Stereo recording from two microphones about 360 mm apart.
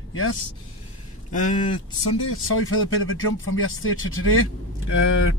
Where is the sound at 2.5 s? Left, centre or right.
Left.